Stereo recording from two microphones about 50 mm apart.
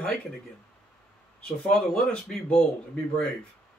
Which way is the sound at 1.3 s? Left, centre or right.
Centre.